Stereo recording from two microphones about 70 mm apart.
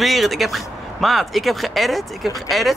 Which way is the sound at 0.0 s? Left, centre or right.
Centre.